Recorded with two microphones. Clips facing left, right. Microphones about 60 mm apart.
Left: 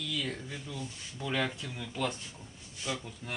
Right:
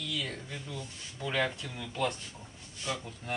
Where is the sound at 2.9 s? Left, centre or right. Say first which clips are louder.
Even; centre.